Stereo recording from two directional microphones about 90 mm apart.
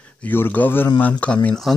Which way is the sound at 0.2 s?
20° left (ahead or behind).